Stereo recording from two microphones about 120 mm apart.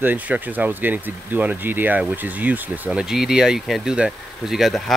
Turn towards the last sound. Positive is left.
turn(degrees=0)  # may be behind; listen again after turning